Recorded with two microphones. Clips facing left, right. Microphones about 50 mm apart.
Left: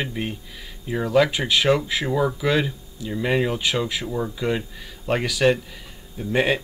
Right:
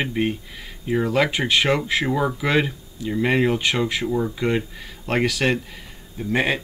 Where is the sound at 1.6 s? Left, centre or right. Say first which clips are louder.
Even; right.